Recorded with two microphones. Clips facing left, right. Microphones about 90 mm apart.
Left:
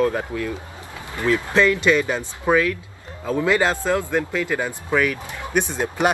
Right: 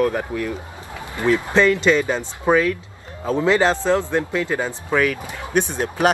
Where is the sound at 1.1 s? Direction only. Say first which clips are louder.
Right 2 dB; 20° right (ahead or behind).